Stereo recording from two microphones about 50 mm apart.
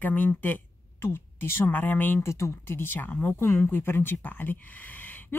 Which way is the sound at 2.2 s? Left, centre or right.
Left.